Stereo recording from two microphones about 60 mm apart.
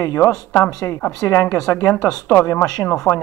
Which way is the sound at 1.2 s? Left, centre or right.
Left.